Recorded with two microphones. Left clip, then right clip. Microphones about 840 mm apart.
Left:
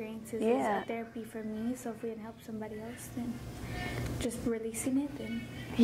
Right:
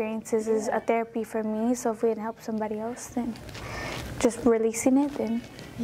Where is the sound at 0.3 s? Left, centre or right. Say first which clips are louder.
Right 4 dB; right.